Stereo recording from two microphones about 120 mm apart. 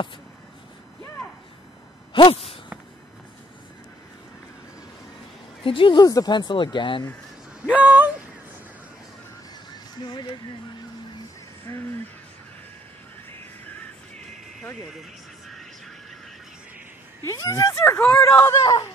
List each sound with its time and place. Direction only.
2.1 s whip: 45° left (ahead or behind)
5.6 s speech: 45° left (ahead or behind)
7.6 s a sound: 10° right (ahead or behind)
10.0 s speech: 40° left (ahead or behind)
11.7 s speech: 20° left (ahead or behind)
13.3 s music: 15° left (ahead or behind)
14.9 s a sound: centre (ahead or behind)
17.4 s speech: 25° left (ahead or behind)